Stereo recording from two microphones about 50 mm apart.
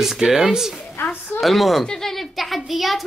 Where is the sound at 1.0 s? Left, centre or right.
Left.